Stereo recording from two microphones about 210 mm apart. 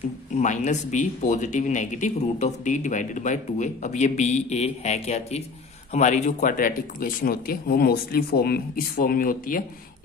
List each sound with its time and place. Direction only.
0.4 s speech: 35° left (ahead or behind)